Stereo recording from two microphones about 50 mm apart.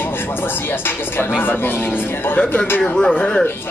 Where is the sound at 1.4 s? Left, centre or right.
Left.